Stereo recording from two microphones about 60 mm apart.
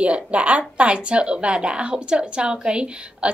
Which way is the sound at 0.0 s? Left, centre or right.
Centre.